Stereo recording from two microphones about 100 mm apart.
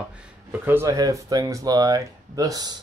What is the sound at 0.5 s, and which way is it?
Speech, 20° right (ahead or behind).